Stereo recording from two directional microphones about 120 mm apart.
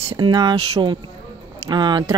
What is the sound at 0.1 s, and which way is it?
Speech, 40° right (ahead or behind).